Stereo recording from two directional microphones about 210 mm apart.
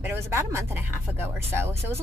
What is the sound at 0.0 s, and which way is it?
Speech, 10° right (ahead or behind).